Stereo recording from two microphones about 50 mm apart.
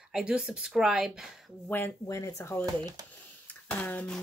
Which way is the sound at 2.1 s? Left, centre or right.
Left.